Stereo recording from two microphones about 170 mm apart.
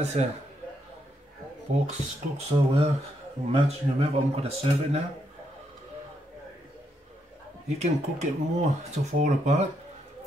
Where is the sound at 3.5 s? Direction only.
35° right (ahead or behind).